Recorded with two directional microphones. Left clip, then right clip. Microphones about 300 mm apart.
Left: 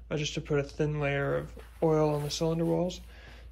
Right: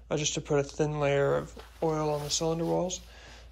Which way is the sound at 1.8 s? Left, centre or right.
Centre.